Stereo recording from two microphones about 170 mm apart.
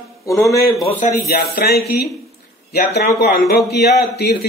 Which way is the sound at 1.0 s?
65° left (ahead or behind).